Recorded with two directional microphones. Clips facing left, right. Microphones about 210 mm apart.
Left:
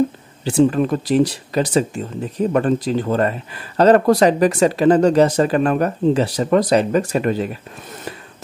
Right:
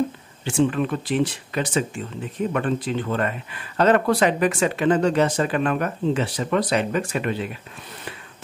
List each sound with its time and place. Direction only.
0.5 s speech: 35° left (ahead or behind)